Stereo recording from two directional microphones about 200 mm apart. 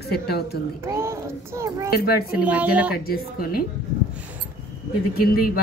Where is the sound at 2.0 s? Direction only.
50° left (ahead or behind).